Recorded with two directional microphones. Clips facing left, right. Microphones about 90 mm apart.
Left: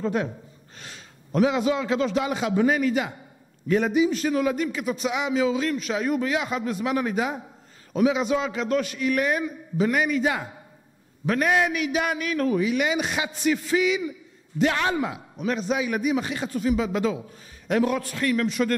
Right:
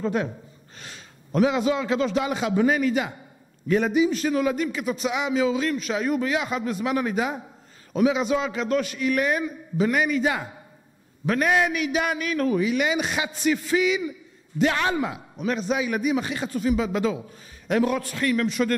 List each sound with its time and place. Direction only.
0.0 s a man's voice: 15° right (ahead or behind)